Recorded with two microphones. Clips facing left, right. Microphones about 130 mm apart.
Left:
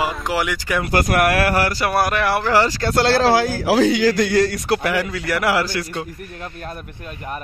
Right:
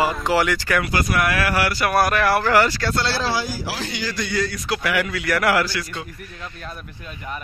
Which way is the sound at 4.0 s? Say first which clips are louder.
Left 9 dB; 80° left.